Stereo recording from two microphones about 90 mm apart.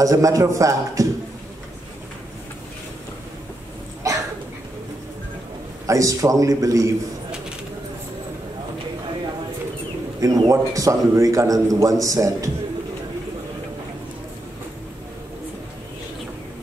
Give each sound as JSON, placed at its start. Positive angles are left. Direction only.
{"t": 0.0, "sound": "a man's voice", "side_deg": -40}
{"t": 4.1, "sound": "a sound", "side_deg": -35}
{"t": 5.9, "sound": "a man's voice", "side_deg": -40}
{"t": 10.2, "sound": "a man's voice", "side_deg": -40}